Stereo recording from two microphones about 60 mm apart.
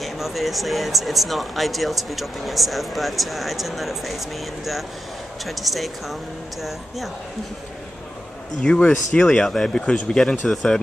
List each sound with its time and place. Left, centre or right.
0.0 s speech: centre
5.4 s speech: centre
8.6 s speech: centre